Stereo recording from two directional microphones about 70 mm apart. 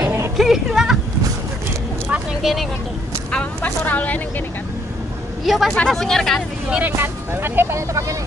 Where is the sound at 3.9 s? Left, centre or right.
Left.